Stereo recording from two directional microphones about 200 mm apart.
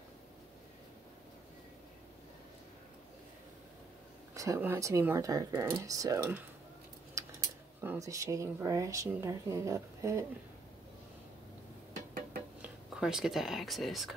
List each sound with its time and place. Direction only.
4.3 s speech: 15° right (ahead or behind)
7.2 s a sound: 15° right (ahead or behind)
7.8 s speech: 15° right (ahead or behind)
12.6 s speech: 5° right (ahead or behind)